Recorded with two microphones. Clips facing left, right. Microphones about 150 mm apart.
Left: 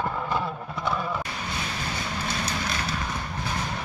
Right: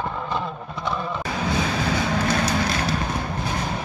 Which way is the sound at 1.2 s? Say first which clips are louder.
Right 9 dB; 90° right.